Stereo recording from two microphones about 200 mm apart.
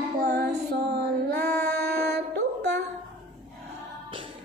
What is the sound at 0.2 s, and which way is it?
Female singing, 55° right (ahead or behind).